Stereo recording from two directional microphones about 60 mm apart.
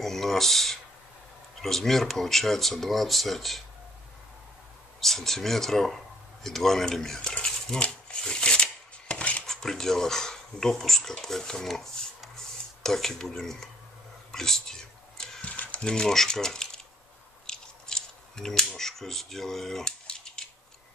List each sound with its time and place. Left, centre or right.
0.0 s speech: centre
5.0 s speech: centre
7.2 s shuffling cards: centre
9.5 s speech: centre
14.3 s whispering: centre
15.4 s mechanisms: left
15.8 s speech: centre
17.5 s scissors: centre
18.8 s speech: centre